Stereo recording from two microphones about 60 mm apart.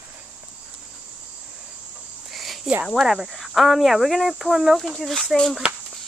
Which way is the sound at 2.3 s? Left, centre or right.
Centre.